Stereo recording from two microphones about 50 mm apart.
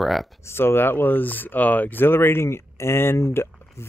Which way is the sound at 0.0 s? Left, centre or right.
Centre.